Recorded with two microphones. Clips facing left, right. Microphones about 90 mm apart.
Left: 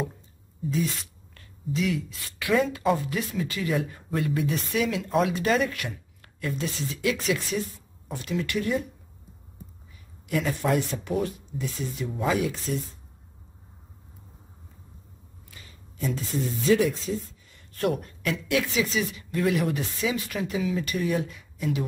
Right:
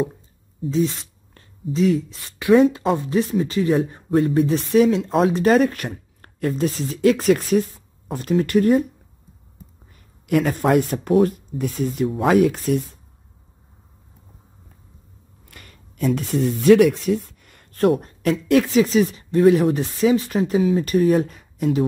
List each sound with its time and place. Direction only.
0.7 s speech: 30° right (ahead or behind); by 8.8 s 45° right (ahead or behind)
9.9 s speech: 55° right (ahead or behind)
15.5 s a sound: 60° right (ahead or behind)
18.0 s speech: 40° right (ahead or behind)